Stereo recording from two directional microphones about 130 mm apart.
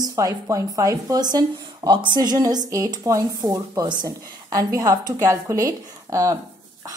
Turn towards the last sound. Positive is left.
turn(degrees=-25)  # may be behind; listen again after turning